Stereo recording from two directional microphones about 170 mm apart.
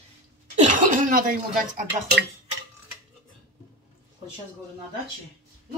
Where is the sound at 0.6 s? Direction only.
50° right (ahead or behind).